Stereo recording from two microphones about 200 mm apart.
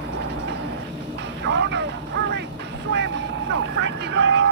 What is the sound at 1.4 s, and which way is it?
Vehicle, 60° right (ahead or behind).